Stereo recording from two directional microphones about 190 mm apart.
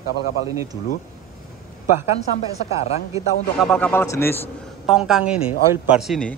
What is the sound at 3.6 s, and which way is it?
Speech, 10° left (ahead or behind).